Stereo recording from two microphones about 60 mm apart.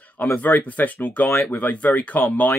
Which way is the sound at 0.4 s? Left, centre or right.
Left.